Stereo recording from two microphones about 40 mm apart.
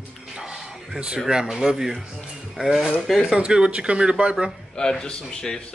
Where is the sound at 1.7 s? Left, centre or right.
Centre.